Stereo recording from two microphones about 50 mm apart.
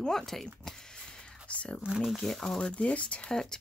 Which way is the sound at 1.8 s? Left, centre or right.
Centre.